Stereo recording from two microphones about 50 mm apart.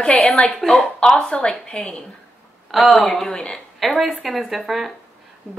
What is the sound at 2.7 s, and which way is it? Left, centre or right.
Speech, centre.